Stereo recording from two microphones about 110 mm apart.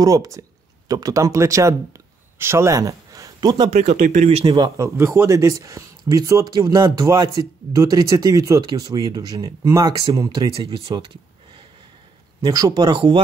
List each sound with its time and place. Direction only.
0.0 s speech: 35° right (ahead or behind)
3.7 s speech: 85° right
4.7 s speech: 25° right (ahead or behind)
10.6 s speech: 55° right (ahead or behind)
12.4 s speech: 40° right (ahead or behind)